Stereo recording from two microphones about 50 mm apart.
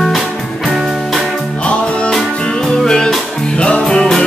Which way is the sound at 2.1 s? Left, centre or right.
Centre.